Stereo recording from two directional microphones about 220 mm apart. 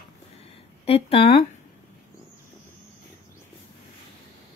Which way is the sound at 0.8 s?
25° left (ahead or behind).